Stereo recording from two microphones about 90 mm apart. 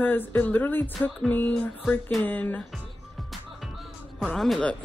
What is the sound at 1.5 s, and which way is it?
Speech, 5° left (ahead or behind).